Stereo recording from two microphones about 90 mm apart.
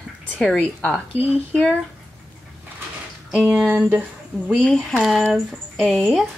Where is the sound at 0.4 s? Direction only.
10° left (ahead or behind).